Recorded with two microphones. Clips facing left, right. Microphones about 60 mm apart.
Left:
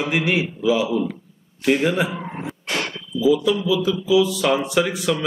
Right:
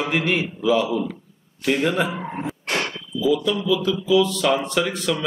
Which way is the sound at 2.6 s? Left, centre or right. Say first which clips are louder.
Even; right.